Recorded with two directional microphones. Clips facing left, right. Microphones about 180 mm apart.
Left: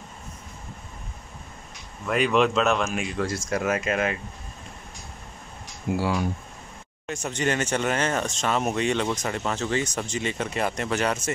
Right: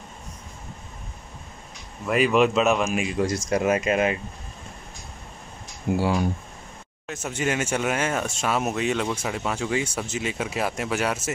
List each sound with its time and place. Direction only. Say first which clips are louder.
2.0 s speech: right 2 dB; 5° right (ahead or behind); by 4.2 s 20° right (ahead or behind)
5.9 s speech: right 2 dB; 20° right (ahead or behind)
7.1 s speech: even; 5° right (ahead or behind)